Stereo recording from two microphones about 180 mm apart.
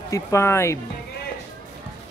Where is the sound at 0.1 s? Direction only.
15° left (ahead or behind).